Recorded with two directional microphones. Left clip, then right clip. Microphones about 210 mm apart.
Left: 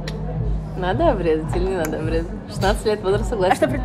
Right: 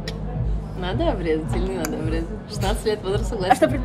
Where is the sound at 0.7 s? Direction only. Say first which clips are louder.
Left 5 dB; 20° left (ahead or behind).